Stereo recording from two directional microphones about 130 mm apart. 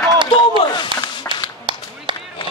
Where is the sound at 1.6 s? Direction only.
40° right (ahead or behind).